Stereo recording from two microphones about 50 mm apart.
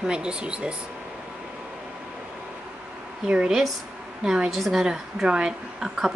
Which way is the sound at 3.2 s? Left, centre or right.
Right.